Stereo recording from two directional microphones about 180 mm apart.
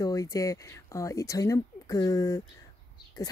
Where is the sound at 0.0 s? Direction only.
20° left (ahead or behind).